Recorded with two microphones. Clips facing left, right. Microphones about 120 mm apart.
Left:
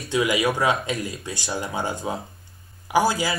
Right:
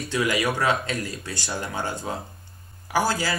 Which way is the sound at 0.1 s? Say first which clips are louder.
Left 3 dB; 15° left (ahead or behind).